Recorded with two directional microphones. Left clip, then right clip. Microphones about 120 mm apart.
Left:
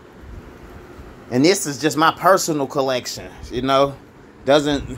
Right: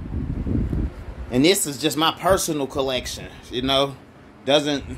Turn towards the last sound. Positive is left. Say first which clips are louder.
# left 3 dB
turn(degrees=40)  # may be behind; listen again after turning